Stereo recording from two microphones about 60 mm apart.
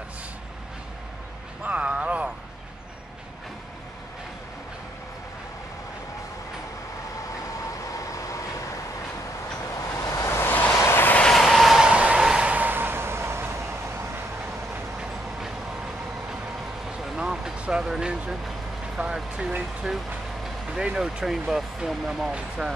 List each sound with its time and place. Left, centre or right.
1.6 s a sound: right
7.8 s vehicle: left
9.8 s vehicle: left
10.2 s a sound: left
10.8 s vehicle: left
11.2 s vehicle: centre
11.8 s train: centre
12.2 s vehicle: centre
12.4 s vehicle: right
17.0 s vehicle: centre
17.6 s a sound: centre
18.9 s vehicle: centre
20.7 s speech: centre